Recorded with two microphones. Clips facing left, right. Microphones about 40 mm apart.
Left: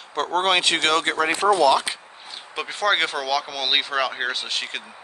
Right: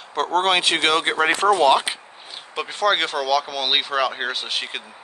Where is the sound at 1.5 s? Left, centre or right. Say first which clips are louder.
Even; right.